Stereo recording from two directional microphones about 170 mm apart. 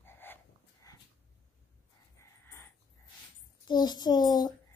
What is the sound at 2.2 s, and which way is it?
Dog, 15° left (ahead or behind).